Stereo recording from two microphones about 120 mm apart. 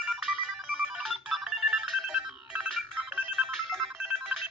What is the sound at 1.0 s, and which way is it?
Telephone, 5° right (ahead or behind).